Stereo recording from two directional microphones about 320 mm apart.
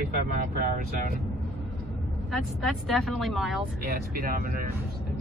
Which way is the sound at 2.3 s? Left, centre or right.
Centre.